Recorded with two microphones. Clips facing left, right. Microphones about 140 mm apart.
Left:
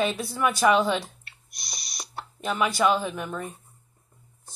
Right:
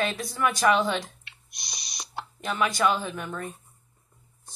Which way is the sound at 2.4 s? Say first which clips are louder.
Left 1 dB; 5° left (ahead or behind).